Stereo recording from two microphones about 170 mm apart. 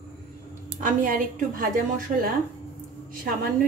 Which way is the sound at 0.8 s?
55° right (ahead or behind).